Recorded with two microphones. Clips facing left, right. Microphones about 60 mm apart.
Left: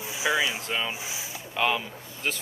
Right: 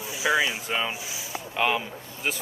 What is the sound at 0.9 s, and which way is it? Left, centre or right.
Speech, left.